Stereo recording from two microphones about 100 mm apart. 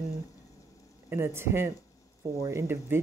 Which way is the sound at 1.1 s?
25° right (ahead or behind).